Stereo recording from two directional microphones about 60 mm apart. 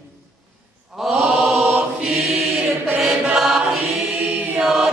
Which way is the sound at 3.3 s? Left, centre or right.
Centre.